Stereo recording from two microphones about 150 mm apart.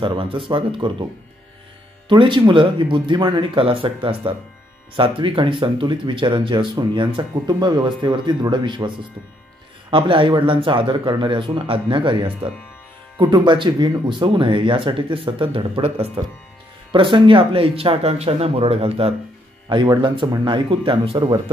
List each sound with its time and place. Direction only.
0.0 s speech: 35° right (ahead or behind)
2.0 s speech: 35° right (ahead or behind)